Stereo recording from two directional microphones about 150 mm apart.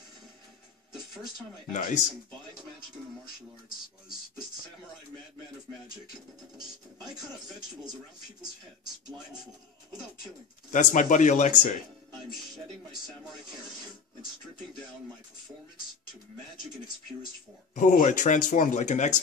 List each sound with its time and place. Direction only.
1.7 s speech: 60° left (ahead or behind)
10.7 s speech: 60° left (ahead or behind)
17.7 s speech: 55° left (ahead or behind)